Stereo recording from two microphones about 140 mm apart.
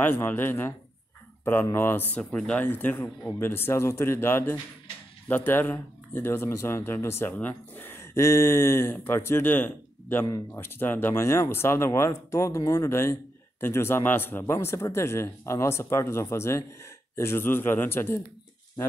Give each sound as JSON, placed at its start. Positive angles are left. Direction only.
{"t": 0.0, "sound": "speech", "side_deg": 15}